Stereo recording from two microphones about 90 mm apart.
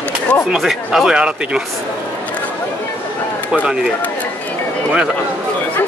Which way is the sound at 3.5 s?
10° right (ahead or behind).